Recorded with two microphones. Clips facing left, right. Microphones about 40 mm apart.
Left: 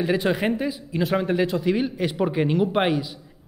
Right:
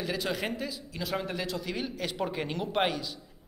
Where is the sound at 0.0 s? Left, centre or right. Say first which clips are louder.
Left 10 dB; left.